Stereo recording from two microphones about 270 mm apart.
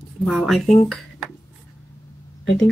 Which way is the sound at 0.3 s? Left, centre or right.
Centre.